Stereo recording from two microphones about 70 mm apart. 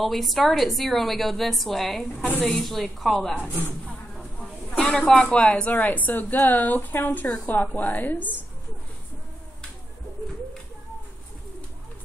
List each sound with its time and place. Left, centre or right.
0.0 s a woman's voice: centre
4.7 s a woman's voice: centre; by 8.4 s left